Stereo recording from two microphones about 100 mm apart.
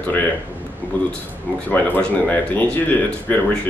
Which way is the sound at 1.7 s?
15° left (ahead or behind).